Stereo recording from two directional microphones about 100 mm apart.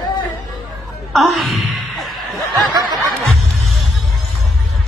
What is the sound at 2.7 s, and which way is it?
Snicker, 50° right (ahead or behind).